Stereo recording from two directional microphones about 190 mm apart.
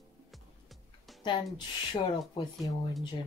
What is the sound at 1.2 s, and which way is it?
Speech, 25° left (ahead or behind).